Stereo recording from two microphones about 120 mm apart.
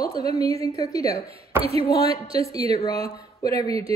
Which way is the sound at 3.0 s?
30° left (ahead or behind).